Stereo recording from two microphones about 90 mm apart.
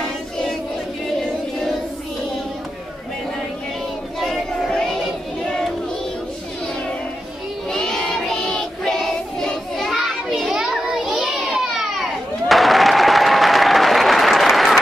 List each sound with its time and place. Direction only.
4.2 s child singing: 5° left (ahead or behind)
7.7 s child singing: 5° left (ahead or behind)